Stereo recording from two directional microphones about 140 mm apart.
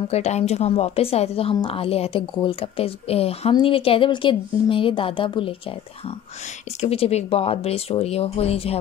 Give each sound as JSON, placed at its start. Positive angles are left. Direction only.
{"t": 0.1, "sound": "a woman's voice", "side_deg": 50}